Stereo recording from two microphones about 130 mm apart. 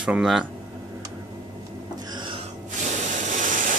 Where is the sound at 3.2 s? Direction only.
85° right.